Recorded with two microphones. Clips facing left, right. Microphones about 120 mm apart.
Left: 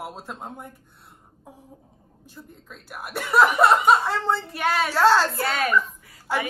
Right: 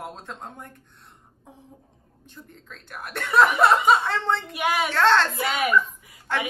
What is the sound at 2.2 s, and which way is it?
A woman's voice, 5° left (ahead or behind).